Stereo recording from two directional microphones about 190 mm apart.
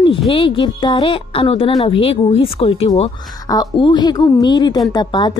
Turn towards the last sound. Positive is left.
turn(degrees=20)  # may be behind; listen again after turning